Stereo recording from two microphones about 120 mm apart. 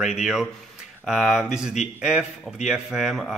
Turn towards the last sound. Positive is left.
turn(degrees=0)  # may be behind; listen again after turning